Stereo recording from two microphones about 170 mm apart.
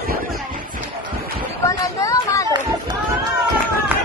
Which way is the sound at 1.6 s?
20° left (ahead or behind).